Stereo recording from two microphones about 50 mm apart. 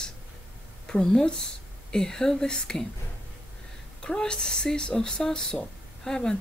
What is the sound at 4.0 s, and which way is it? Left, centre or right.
Speech, centre.